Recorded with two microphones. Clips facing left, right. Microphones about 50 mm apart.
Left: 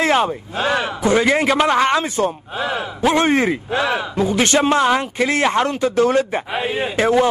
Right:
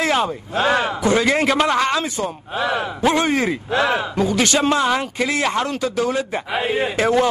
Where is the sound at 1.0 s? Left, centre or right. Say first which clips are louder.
Left 3 dB; centre.